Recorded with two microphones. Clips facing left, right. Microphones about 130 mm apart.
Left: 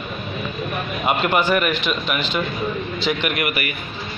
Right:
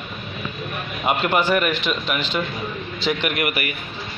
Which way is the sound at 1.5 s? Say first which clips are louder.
Left 1 dB; 30° right (ahead or behind).